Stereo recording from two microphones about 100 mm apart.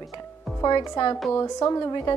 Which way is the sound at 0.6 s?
45° left (ahead or behind).